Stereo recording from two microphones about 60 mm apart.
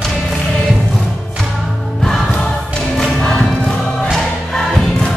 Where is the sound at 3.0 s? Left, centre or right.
Centre.